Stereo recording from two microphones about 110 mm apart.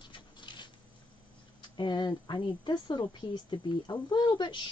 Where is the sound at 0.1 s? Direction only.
45° left (ahead or behind).